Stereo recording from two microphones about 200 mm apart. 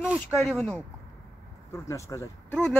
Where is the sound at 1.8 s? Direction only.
15° left (ahead or behind).